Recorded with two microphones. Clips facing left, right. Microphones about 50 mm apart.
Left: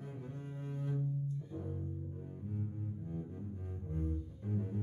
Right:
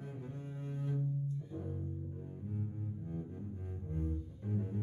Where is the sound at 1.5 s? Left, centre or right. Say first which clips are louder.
Even; centre.